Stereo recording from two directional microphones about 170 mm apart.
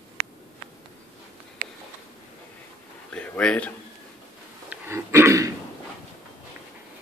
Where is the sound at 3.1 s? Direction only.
5° left (ahead or behind).